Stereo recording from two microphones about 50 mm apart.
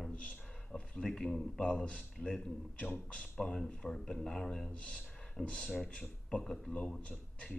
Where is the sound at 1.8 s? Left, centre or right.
Left.